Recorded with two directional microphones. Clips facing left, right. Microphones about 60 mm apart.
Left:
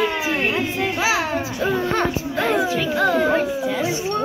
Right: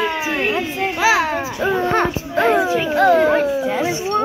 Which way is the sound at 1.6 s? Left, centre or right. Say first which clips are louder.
Right 4 dB; right.